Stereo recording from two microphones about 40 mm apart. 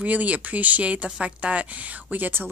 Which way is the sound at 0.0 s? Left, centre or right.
Right.